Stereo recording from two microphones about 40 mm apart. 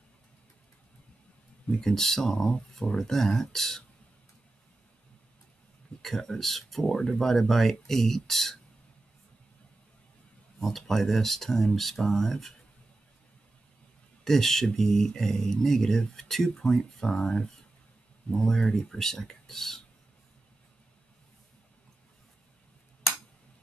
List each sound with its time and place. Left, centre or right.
1.7 s speech: centre
3.0 s speech: centre
6.0 s speech: centre
10.6 s speech: centre
14.2 s speech: centre